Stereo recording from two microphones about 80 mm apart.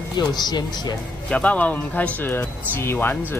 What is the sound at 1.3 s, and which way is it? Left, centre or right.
Speech, centre.